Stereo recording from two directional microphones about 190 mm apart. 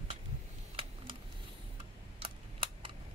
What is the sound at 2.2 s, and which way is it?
Typing, 25° right (ahead or behind).